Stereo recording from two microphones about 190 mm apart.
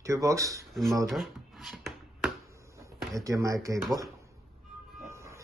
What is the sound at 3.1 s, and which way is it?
Speech, 15° right (ahead or behind).